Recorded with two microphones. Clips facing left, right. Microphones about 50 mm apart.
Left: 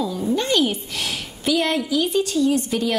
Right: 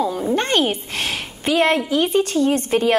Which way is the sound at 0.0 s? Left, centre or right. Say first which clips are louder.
Right 3 dB; right.